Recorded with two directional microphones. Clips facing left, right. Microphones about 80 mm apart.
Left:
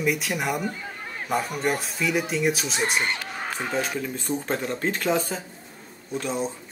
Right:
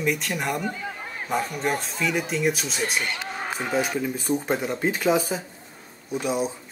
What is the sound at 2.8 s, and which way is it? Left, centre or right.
Speech, left.